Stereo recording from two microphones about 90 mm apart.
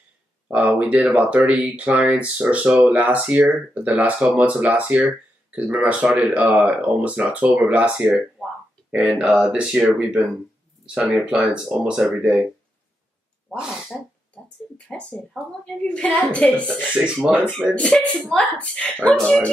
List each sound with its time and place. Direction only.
0.5 s speech: 15° right (ahead or behind)
14.9 s speech: 15° left (ahead or behind)
16.9 s speech: 10° right (ahead or behind)
17.9 s speech: 15° left (ahead or behind)